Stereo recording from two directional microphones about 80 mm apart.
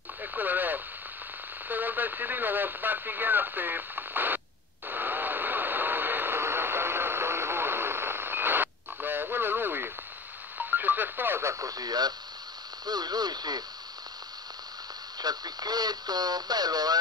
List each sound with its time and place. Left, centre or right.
0.2 s radio: right
1.7 s speech: right
4.8 s radio: right
12.8 s speech: right
15.1 s speech: right